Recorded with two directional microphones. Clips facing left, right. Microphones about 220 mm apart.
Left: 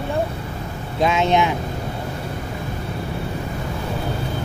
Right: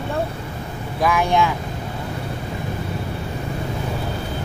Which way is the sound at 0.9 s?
20° left (ahead or behind).